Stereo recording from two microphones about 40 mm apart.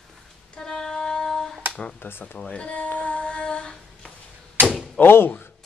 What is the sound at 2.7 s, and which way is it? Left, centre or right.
Female singing, left.